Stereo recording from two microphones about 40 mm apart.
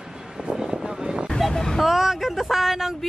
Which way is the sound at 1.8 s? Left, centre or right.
Centre.